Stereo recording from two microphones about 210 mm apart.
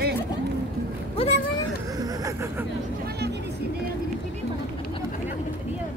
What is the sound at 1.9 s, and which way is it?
Vehicle, 15° right (ahead or behind).